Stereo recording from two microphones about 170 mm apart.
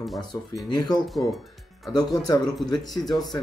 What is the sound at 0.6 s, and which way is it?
Speech, 25° left (ahead or behind).